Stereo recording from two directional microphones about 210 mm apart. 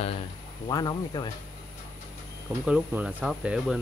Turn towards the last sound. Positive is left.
turn(degrees=-5)  # may be behind; listen again after turning